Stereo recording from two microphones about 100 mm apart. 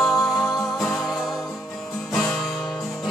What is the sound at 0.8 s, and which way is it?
Music, 5° left (ahead or behind).